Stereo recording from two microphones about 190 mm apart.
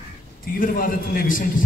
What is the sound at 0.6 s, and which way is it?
Speech, 45° left (ahead or behind).